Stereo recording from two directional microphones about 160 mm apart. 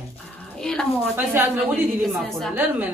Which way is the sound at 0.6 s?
5° left (ahead or behind).